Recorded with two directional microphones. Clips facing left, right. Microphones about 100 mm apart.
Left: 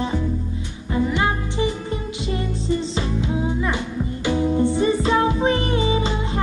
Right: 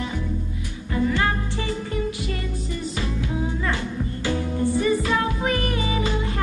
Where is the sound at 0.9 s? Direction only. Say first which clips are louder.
Left 1 dB; 20° left (ahead or behind).